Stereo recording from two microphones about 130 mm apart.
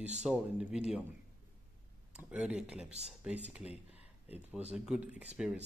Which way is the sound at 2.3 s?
5° right (ahead or behind).